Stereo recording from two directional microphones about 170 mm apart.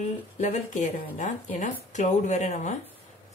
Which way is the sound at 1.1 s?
45° left (ahead or behind).